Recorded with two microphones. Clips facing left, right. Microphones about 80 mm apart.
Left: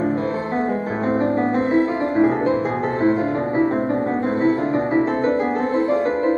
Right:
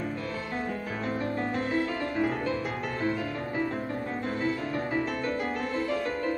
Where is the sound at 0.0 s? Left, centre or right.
Left.